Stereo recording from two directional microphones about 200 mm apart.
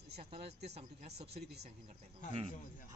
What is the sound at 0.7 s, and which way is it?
Speech, 35° right (ahead or behind).